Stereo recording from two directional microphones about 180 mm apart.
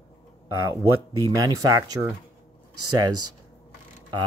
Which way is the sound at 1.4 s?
20° right (ahead or behind).